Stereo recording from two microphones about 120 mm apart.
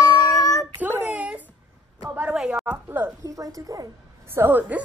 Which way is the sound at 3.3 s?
30° right (ahead or behind).